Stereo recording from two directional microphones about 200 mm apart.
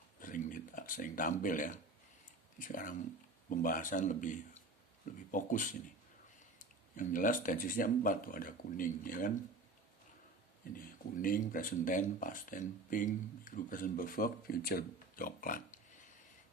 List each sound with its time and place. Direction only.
0.2 s a sound: 40° left (ahead or behind)
2.6 s speech: 40° left (ahead or behind)
7.0 s speech: 40° left (ahead or behind)
10.6 s speech: 45° left (ahead or behind)